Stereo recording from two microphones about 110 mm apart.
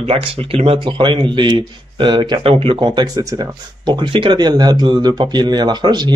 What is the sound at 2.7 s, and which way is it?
Speech, 40° right (ahead or behind).